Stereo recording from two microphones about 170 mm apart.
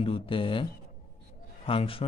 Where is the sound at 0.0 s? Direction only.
30° left (ahead or behind).